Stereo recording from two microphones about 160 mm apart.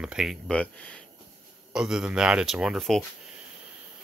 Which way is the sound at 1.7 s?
5° right (ahead or behind).